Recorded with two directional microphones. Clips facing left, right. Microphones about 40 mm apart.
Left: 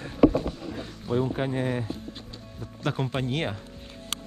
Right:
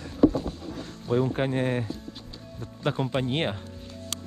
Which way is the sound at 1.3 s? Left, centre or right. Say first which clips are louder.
Right 2 dB; right.